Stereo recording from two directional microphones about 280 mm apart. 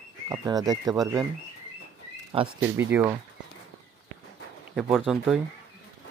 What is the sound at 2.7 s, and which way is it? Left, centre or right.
Speech, centre.